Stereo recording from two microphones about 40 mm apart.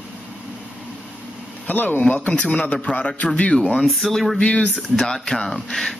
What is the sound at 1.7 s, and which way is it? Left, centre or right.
Speech, left.